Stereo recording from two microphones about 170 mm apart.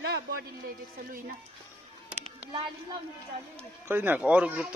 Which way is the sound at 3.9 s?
10° right (ahead or behind).